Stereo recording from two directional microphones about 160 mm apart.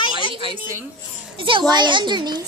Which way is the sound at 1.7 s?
30° right (ahead or behind).